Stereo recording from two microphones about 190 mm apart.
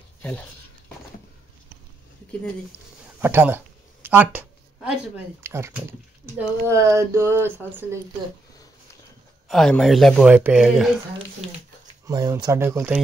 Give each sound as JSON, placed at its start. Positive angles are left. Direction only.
{"t": 0.2, "sound": "speech", "side_deg": 10}
{"t": 3.2, "sound": "a sound", "side_deg": -10}
{"t": 5.4, "sound": "speech", "side_deg": -15}
{"t": 9.5, "sound": "speech", "side_deg": 0}
{"t": 12.1, "sound": "speech", "side_deg": -20}